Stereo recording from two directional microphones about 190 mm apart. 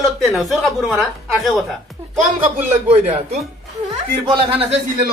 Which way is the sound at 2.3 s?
30° right (ahead or behind).